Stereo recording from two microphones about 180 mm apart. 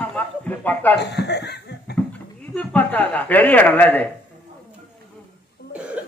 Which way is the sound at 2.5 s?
5° left (ahead or behind).